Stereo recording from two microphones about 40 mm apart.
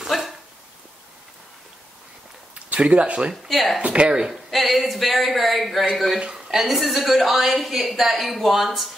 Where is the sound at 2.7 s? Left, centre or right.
Right.